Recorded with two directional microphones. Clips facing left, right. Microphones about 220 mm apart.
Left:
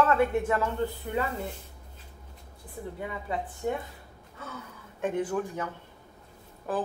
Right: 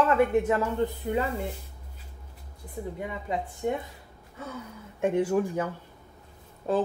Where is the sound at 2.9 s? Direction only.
20° right (ahead or behind).